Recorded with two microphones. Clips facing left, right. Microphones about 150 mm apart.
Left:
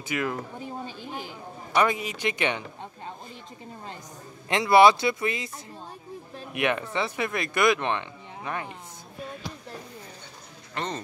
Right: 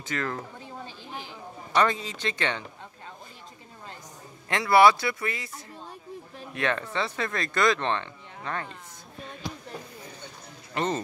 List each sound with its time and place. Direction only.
0.0 s speech: 10° left (ahead or behind)
4.5 s speech: 20° left (ahead or behind)
6.5 s speech: 15° left (ahead or behind)
10.7 s speech: 5° right (ahead or behind)